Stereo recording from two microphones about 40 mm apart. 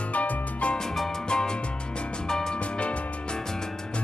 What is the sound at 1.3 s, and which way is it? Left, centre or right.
Music, left.